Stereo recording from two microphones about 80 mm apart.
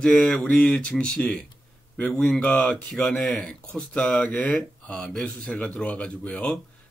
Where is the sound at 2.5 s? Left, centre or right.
Centre.